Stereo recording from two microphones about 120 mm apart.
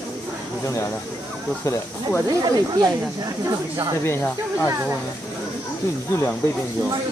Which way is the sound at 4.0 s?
20° left (ahead or behind).